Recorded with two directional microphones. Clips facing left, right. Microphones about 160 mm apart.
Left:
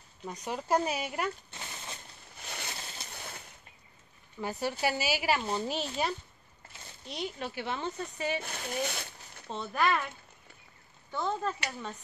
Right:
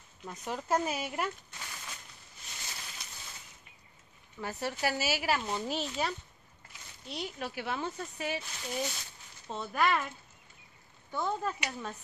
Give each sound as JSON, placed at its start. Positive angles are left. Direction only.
{"t": 0.2, "sound": "speech", "side_deg": 0}
{"t": 1.5, "sound": "a sound", "side_deg": 25}
{"t": 2.4, "sound": "a sound", "side_deg": 65}
{"t": 4.4, "sound": "speech", "side_deg": 0}
{"t": 7.1, "sound": "speech", "side_deg": -5}
{"t": 8.4, "sound": "speech", "side_deg": 55}
{"t": 9.5, "sound": "speech", "side_deg": -5}
{"t": 11.1, "sound": "speech", "side_deg": -10}